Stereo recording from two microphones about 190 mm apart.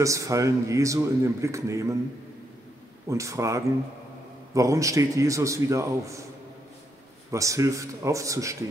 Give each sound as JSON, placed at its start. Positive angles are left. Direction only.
{"t": 0.0, "sound": "a man's voice", "side_deg": -15}
{"t": 3.1, "sound": "a man's voice", "side_deg": -15}
{"t": 7.2, "sound": "a man's voice", "side_deg": -15}